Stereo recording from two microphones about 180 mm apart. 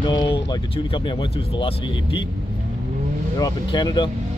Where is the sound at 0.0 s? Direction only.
25° left (ahead or behind).